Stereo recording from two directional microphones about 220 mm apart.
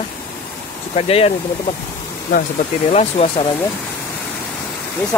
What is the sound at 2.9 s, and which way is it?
Speech, 25° left (ahead or behind).